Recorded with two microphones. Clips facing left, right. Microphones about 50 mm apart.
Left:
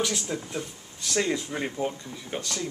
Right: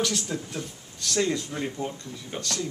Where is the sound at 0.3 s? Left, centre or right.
Centre.